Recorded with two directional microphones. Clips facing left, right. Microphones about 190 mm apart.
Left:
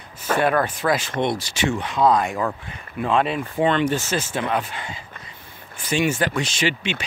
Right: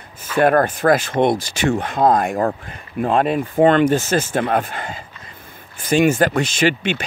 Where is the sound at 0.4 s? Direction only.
50° right (ahead or behind).